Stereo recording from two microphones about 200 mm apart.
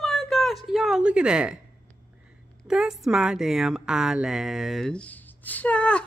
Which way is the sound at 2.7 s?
Centre (ahead or behind).